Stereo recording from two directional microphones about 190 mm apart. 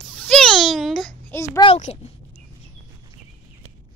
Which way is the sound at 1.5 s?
30° left (ahead or behind).